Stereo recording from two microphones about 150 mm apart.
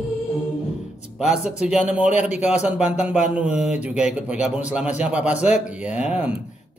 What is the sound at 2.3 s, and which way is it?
Speech, 50° left (ahead or behind).